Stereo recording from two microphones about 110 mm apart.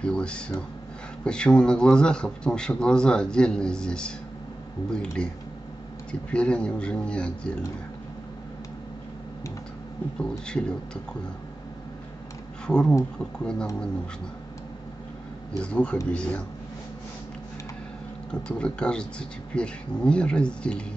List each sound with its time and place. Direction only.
0.0 s a man's voice: 10° left (ahead or behind)
6.3 s a man's voice: 10° left (ahead or behind)
10.4 s a man's voice: 5° left (ahead or behind)
12.6 s a man's voice: 5° left (ahead or behind)
15.6 s a man's voice: 10° left (ahead or behind)
18.3 s a man's voice: 10° left (ahead or behind)